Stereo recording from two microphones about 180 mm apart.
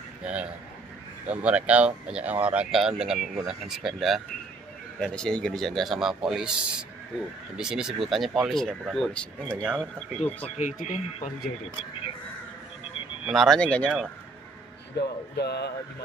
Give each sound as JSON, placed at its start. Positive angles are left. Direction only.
{"t": 0.2, "sound": "a man's voice", "side_deg": -5}
{"t": 4.9, "sound": "speech", "side_deg": 5}
{"t": 10.6, "sound": "speech", "side_deg": 45}
{"t": 13.3, "sound": "speech", "side_deg": 0}
{"t": 15.0, "sound": "speech", "side_deg": 65}